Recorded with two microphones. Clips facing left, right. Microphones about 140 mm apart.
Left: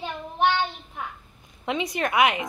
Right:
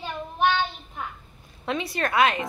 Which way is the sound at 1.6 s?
20° left (ahead or behind).